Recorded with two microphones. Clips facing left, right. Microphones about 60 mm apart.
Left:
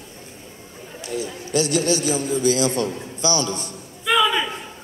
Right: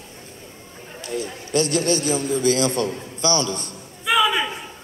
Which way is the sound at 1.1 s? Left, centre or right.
Right.